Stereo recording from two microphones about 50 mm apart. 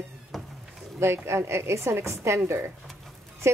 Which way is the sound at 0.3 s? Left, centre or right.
Centre.